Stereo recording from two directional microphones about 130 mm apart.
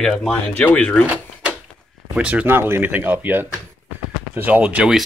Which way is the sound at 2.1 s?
10° right (ahead or behind).